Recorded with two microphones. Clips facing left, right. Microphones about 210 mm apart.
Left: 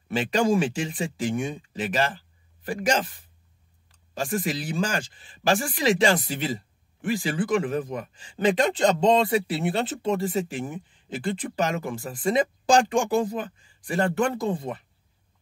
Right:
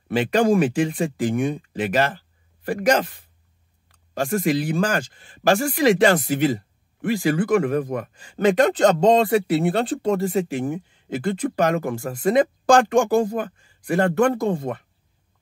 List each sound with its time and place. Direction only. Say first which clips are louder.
0.2 s speech: right 4 dB; 55° right (ahead or behind)
4.3 s speech: right 7 dB; 50° right (ahead or behind)